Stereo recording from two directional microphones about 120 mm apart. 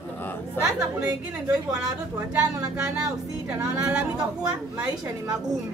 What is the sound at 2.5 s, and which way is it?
Speech, 30° right (ahead or behind).